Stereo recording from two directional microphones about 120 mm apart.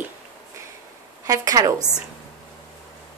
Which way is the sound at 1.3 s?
30° right (ahead or behind).